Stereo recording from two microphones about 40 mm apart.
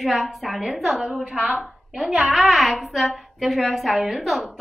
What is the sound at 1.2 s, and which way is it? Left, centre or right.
Speech, right.